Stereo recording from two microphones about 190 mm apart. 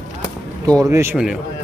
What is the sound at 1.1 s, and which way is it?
Speech, 5° right (ahead or behind).